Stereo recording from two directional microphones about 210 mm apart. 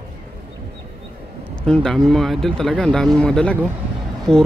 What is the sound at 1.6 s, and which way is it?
Speech, 5° left (ahead or behind).